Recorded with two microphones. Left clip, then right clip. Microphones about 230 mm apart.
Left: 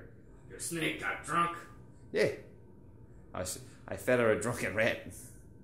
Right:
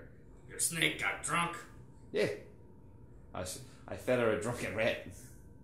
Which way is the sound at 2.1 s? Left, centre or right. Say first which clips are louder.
Left 3 dB; centre.